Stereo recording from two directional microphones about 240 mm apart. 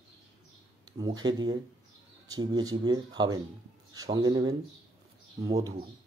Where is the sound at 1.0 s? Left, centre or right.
Centre.